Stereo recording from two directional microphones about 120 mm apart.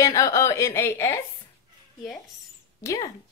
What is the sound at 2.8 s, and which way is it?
Speech, 30° left (ahead or behind).